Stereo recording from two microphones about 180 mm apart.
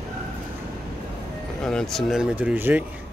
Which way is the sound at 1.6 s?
5° left (ahead or behind).